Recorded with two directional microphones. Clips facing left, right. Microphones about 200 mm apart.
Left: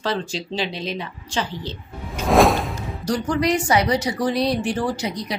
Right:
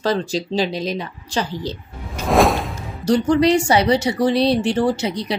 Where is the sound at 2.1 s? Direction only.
Centre (ahead or behind).